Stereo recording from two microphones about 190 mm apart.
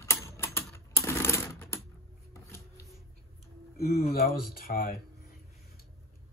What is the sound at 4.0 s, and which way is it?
Speech, 55° left (ahead or behind).